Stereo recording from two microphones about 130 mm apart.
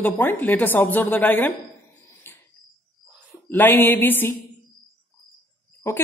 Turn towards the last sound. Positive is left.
turn(degrees=20)  # may be behind; listen again after turning